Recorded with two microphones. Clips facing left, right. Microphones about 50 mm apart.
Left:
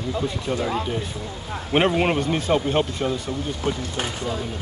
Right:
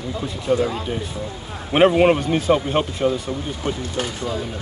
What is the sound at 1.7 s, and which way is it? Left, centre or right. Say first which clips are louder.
Speech: right 5 dB; centre.